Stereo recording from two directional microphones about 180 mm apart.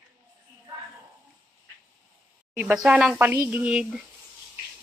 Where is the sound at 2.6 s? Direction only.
5° right (ahead or behind).